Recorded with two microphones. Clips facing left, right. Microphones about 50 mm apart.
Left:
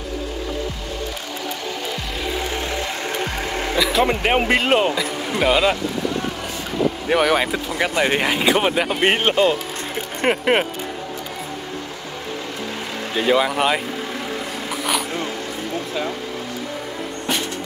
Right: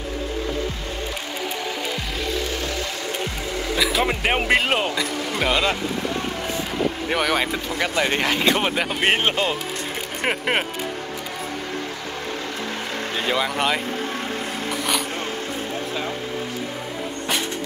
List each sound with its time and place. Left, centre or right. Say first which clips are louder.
3.3 s music: left 3 dB; left
3.7 s speech: left 3 dB; centre
7.1 s speech: left 5 dB; centre
13.3 s speech: left 5 dB; centre